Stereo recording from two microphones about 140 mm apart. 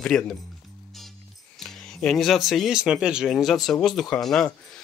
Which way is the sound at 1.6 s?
5° left (ahead or behind).